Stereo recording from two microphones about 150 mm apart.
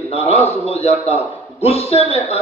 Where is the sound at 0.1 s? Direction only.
40° left (ahead or behind).